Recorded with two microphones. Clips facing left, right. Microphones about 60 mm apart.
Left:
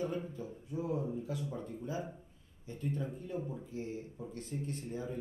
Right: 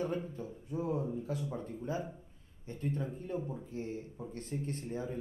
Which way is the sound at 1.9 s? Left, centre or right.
Right.